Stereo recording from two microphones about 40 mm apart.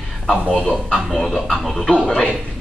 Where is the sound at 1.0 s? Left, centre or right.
Centre.